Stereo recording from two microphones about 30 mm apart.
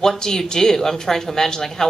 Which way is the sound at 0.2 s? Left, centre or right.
Left.